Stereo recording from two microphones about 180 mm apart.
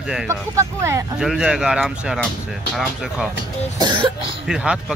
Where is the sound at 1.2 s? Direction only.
5° right (ahead or behind).